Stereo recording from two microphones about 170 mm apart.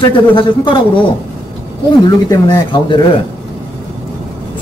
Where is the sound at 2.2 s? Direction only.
25° left (ahead or behind).